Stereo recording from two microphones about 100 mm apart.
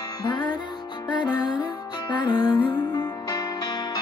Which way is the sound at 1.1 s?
45° left (ahead or behind).